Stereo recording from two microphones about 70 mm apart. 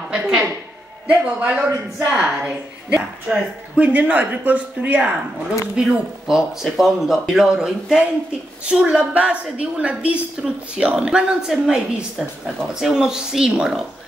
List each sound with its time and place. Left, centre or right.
0.1 s a sound: centre
1.0 s a woman's voice: centre
5.8 s a woman's voice: centre